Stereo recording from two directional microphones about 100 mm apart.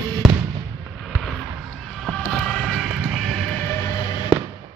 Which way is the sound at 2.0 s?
10° left (ahead or behind).